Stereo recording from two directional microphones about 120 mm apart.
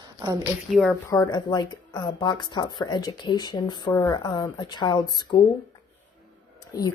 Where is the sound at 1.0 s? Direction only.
30° left (ahead or behind).